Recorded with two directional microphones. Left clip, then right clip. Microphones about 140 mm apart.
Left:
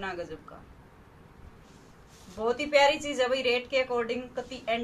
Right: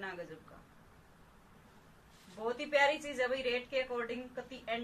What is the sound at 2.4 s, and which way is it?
A woman's voice, 10° left (ahead or behind).